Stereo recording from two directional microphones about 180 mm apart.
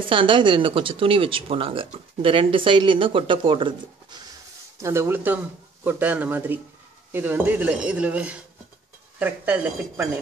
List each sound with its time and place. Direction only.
0.1 s speech: 25° right (ahead or behind)
4.8 s speech: 15° right (ahead or behind)